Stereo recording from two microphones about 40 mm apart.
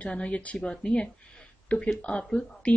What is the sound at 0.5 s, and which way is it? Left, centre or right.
Speech, left.